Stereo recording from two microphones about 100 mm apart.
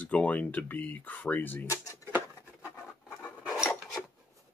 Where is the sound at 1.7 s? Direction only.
35° left (ahead or behind).